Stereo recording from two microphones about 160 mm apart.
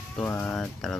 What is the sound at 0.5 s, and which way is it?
Speech, 5° left (ahead or behind).